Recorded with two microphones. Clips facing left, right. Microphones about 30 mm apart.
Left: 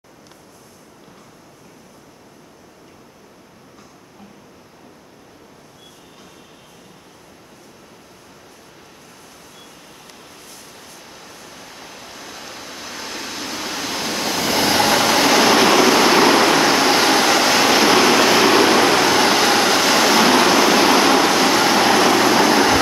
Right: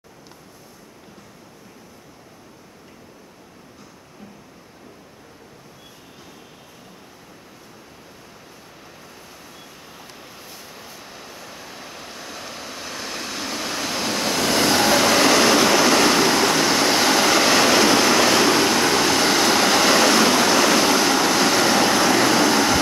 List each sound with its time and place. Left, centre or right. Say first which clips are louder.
9.3 s a sound: even; centre
16.2 s train: left 4 dB; left
19.0 s vehicle: left 3 dB; left
19.6 s train: left 1 dB; centre
20.9 s train: left 4 dB; left
21.3 s train: left 3 dB; centre
22.2 s vehicle: left 3 dB; centre